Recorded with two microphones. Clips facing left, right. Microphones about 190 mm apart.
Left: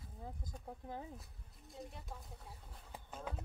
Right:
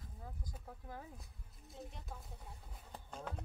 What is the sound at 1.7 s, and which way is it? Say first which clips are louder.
Speech: left 1 dB; centre (ahead or behind).